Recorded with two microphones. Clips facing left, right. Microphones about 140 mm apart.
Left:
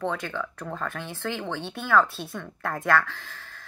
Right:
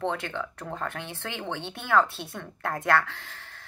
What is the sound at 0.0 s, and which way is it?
Speech, 25° right (ahead or behind).